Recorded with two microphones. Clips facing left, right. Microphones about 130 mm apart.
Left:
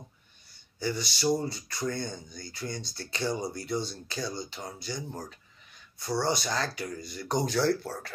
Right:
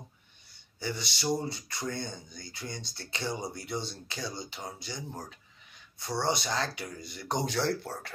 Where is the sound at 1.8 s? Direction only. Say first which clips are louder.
Left 4 dB; 45° left (ahead or behind).